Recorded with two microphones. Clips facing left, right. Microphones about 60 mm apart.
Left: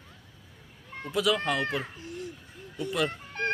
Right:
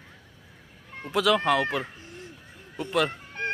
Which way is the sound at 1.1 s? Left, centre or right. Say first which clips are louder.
Right 4 dB; right.